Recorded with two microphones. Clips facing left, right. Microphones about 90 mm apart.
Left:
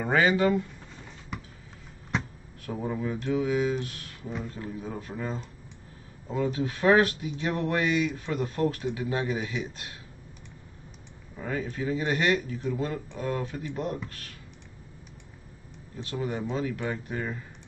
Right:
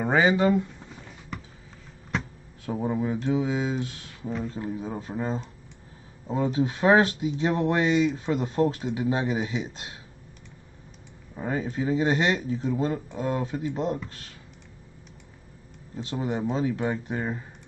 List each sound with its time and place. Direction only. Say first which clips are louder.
0.0 s speech: right 2 dB; 20° right (ahead or behind)
2.6 s speech: right 4 dB; 20° right (ahead or behind)
11.3 s speech: right 3 dB; 25° right (ahead or behind)
16.0 s speech: right 3 dB; 25° right (ahead or behind)